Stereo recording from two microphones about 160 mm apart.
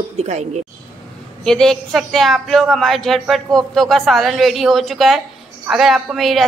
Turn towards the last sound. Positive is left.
turn(degrees=0)  # may be behind; listen again after turning